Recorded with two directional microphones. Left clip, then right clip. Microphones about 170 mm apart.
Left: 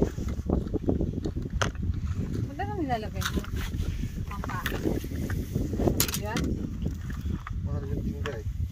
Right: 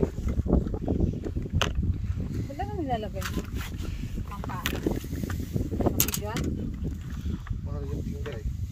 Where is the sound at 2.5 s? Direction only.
70° left (ahead or behind).